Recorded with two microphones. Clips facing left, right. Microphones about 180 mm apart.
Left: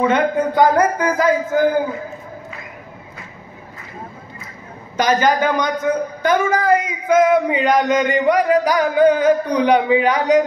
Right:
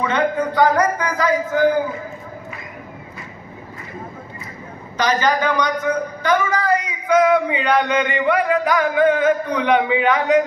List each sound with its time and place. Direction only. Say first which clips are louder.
0.1 s a man's voice: left 3 dB; 50° left (ahead or behind)
4.9 s a man's voice: left 2 dB; 50° left (ahead or behind)